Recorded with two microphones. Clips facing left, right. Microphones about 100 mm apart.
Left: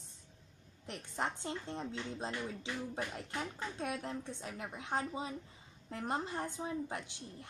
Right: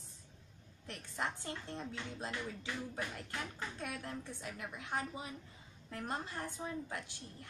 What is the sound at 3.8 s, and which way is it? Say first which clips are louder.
A woman's voice: left 5 dB; 25° left (ahead or behind).